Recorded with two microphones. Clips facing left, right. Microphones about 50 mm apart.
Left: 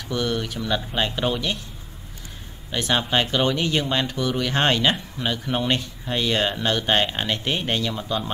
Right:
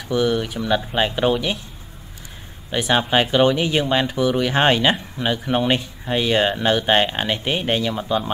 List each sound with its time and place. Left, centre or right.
0.1 s speech: centre
2.7 s speech: centre